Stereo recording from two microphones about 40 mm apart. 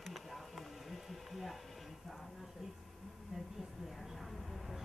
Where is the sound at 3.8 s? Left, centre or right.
Centre.